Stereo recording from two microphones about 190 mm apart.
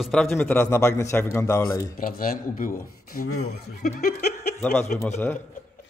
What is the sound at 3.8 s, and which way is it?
Snicker, 55° left (ahead or behind).